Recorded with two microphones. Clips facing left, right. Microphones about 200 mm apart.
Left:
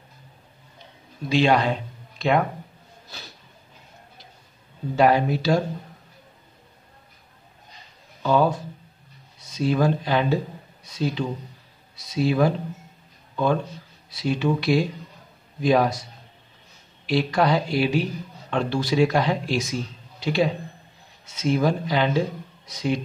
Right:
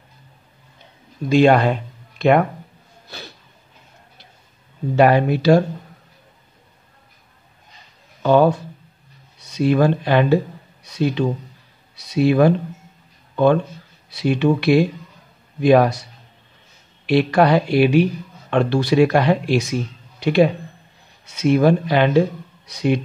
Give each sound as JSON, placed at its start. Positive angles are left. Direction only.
{"t": 1.3, "sound": "speech", "side_deg": -55}
{"t": 4.9, "sound": "a man's voice", "side_deg": -65}
{"t": 8.2, "sound": "a man's voice", "side_deg": -65}
{"t": 14.1, "sound": "a man's voice", "side_deg": -65}
{"t": 17.0, "sound": "a man's voice", "side_deg": -60}